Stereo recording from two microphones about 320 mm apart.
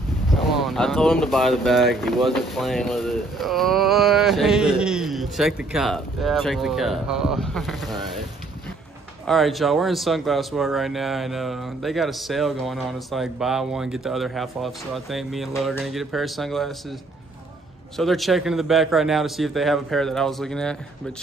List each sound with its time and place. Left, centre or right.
0.3 s speech: centre
9.2 s speech: centre
17.9 s speech: centre